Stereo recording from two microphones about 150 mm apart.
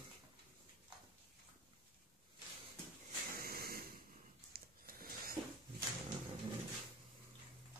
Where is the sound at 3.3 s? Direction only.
90° right.